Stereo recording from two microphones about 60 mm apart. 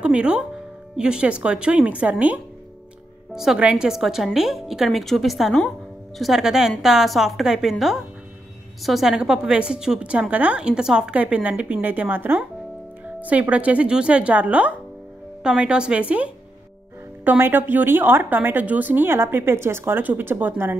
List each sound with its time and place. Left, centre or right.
0.0 s a woman's voice: centre
3.7 s a woman's voice: centre
8.8 s a woman's voice: centre
9.1 s a woman's voice: centre
9.9 s a woman's voice: right
17.2 s a woman's voice: right